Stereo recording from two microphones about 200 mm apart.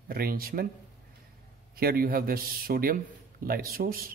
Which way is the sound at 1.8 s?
50° right (ahead or behind).